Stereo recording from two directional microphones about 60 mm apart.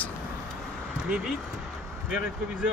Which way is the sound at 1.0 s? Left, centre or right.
Centre.